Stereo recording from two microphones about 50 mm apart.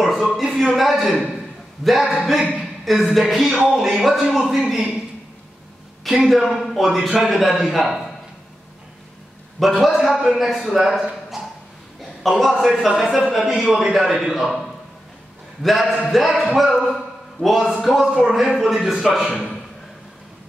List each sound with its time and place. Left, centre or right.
0.0 s a sound: centre
1.8 s a man's voice: centre
2.6 s music: centre
3.7 s a man's voice: centre
6.0 s a man's voice: centre
9.6 s a man's voice: centre
12.2 s a man's voice: centre
15.6 s a man's voice: centre
18.0 s speech: centre
18.3 s a man's voice: centre